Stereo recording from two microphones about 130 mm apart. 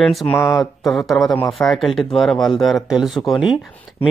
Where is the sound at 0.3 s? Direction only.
20° left (ahead or behind).